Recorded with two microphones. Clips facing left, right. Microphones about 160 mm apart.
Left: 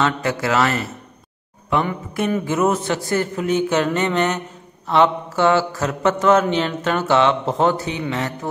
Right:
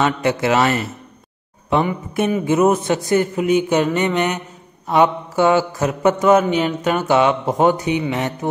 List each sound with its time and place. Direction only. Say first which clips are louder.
0.0 s a man's voice: right 3 dB; 20° right (ahead or behind)